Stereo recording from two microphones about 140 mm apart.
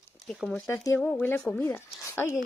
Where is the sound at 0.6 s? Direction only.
20° left (ahead or behind).